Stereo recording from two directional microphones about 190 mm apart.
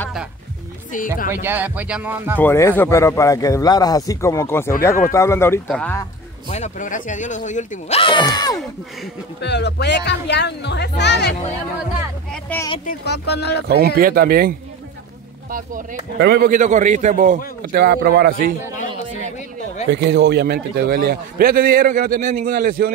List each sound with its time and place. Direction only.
0.9 s speech: 45° left (ahead or behind)
1.3 s speech: 10° right (ahead or behind)
2.4 s speech: 10° left (ahead or behind)
6.5 s speech: 40° left (ahead or behind)
8.0 s speech: 25° left (ahead or behind)
9.4 s speech: 65° left (ahead or behind)
12.5 s speech: 10° left (ahead or behind)
12.8 s speech: 60° left (ahead or behind)
13.7 s a man's voice: 55° right (ahead or behind)
15.5 s a man's voice: 55° right (ahead or behind)
19.9 s a man's voice: 65° right (ahead or behind); by 22.9 s 50° right (ahead or behind)